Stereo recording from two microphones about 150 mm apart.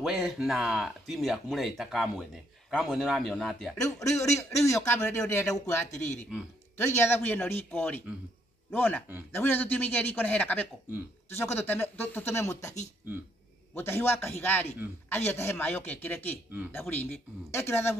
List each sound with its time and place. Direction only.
0.0 s speech: centre (ahead or behind)
4.0 s a man's voice: 20° left (ahead or behind)
7.0 s speech: 15° left (ahead or behind)
13.7 s speech: 15° left (ahead or behind)